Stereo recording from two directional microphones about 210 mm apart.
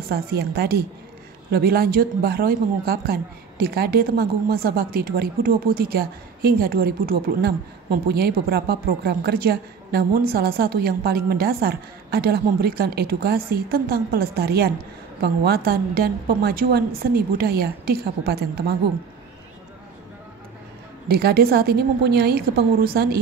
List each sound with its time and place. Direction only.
0.1 s a woman's voice: 50° right (ahead or behind)
21.1 s a woman's voice: 50° right (ahead or behind)